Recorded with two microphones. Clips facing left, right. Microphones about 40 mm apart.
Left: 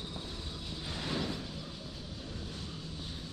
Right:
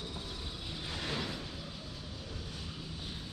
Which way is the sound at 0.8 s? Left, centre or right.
Centre.